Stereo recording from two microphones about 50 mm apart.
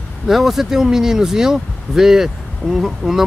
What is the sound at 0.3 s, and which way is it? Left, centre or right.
Speech, centre.